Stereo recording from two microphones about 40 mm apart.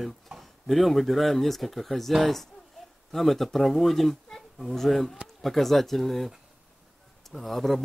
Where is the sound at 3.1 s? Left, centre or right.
Centre.